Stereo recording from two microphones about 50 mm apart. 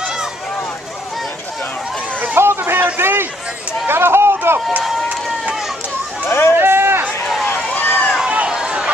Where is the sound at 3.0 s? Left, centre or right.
Right.